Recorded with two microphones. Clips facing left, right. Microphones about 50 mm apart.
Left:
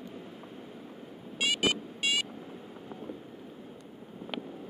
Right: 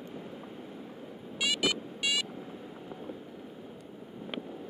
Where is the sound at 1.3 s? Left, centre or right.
Left.